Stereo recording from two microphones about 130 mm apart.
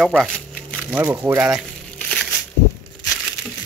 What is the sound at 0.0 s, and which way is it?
Speech, 5° left (ahead or behind).